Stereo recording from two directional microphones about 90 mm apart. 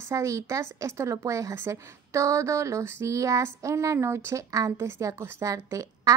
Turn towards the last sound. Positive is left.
turn(degrees=-35)  # may be behind; listen again after turning